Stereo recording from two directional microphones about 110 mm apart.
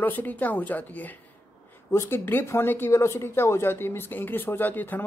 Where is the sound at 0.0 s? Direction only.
15° left (ahead or behind).